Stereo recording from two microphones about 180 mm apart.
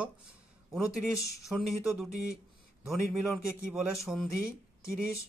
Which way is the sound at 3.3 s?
Centre (ahead or behind).